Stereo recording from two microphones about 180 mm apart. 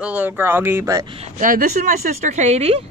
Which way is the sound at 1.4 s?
45° right (ahead or behind).